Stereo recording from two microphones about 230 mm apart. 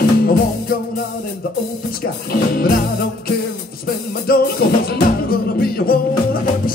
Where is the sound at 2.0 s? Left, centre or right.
Left.